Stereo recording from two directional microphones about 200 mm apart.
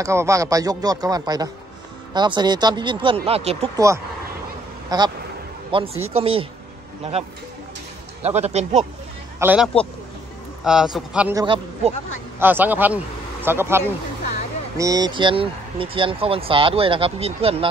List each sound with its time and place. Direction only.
0.0 s speech: 15° right (ahead or behind); by 3.7 s 30° right (ahead or behind)
3.7 s speech: 15° right (ahead or behind)
8.2 s a man's voice: 35° right (ahead or behind)
9.4 s a man's voice: 10° right (ahead or behind)
11.3 s speech: 25° right (ahead or behind)
12.4 s a man's voice: 10° right (ahead or behind); by 17.6 s 30° right (ahead or behind)